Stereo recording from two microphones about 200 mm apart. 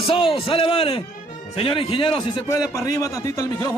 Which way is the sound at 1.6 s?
25° left (ahead or behind).